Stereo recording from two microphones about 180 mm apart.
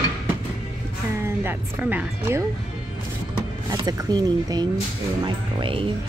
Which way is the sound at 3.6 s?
20° right (ahead or behind).